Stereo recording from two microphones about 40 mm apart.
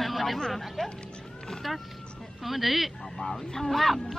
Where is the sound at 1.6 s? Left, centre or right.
Centre.